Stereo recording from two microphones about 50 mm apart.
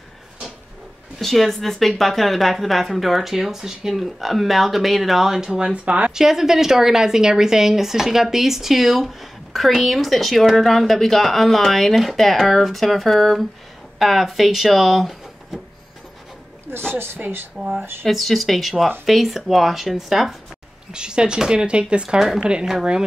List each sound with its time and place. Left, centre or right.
1.2 s a woman's voice: centre; by 6.1 s right
6.1 s a woman's voice: centre
16.9 s speech: right
18.0 s a woman's voice: centre
20.9 s a woman's voice: centre